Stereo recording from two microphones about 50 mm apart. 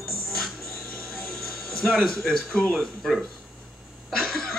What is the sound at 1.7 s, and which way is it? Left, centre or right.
Music, centre.